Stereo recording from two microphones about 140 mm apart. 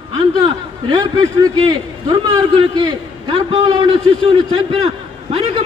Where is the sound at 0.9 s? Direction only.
25° right (ahead or behind).